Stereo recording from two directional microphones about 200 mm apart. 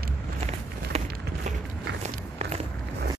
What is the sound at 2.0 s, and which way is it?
Walk, 30° right (ahead or behind).